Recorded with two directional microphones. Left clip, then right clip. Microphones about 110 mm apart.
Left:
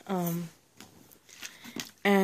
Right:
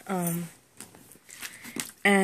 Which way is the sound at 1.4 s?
65° left (ahead or behind).